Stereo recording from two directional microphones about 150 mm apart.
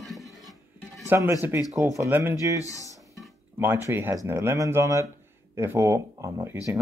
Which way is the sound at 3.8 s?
15° right (ahead or behind).